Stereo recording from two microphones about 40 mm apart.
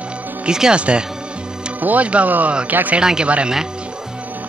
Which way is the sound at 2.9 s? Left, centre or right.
Centre.